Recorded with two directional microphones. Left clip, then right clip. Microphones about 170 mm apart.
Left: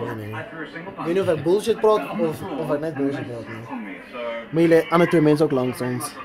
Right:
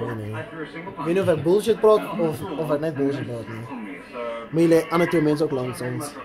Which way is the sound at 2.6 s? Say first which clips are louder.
Right 1 dB; 20° right (ahead or behind).